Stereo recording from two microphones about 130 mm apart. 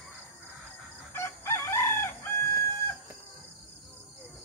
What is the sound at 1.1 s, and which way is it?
Chicken, 20° left (ahead or behind).